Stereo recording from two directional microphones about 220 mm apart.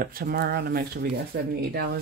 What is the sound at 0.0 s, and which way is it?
Speech, 40° right (ahead or behind).